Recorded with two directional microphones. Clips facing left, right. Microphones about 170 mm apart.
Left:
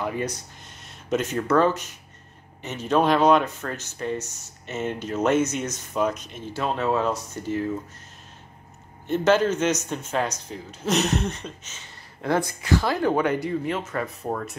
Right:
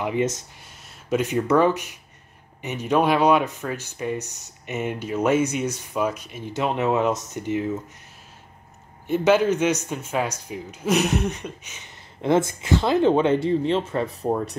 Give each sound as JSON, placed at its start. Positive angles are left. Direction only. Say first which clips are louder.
{"t": 0.0, "sound": "speech", "louder": "right 4 dB", "side_deg": -20}
{"t": 9.0, "sound": "speech", "louder": "right 1 dB", "side_deg": -10}